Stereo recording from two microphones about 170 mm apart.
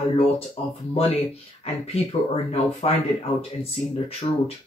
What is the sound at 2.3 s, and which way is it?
Speech, 35° left (ahead or behind).